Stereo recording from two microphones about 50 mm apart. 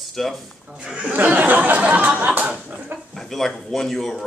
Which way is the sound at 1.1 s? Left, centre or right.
Right.